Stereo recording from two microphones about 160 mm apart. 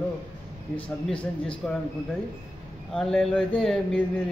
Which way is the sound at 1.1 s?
5° left (ahead or behind).